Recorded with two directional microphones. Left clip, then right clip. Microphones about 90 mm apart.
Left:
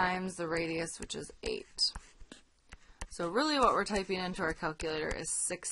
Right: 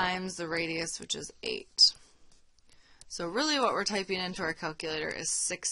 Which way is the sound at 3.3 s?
20° right (ahead or behind).